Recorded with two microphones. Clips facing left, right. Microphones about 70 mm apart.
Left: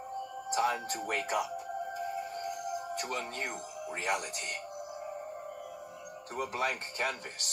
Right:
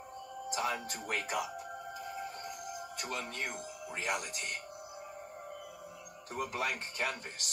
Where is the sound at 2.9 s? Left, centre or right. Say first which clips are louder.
Left 4 dB; left.